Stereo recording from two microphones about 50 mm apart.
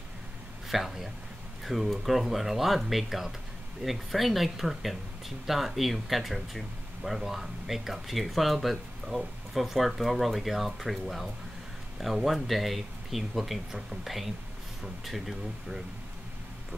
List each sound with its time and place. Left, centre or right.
0.7 s speech: centre
1.6 s a sound: centre
2.0 s speech: centre